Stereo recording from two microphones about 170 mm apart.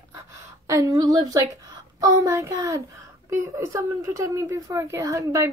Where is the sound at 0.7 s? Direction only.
20° right (ahead or behind).